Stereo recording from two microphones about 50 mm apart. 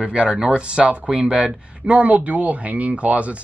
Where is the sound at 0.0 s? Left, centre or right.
Centre.